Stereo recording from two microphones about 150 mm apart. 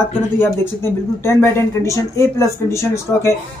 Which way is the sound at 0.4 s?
15° left (ahead or behind).